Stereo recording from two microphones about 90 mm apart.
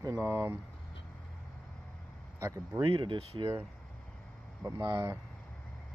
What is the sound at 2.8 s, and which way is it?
Speech, 65° right (ahead or behind).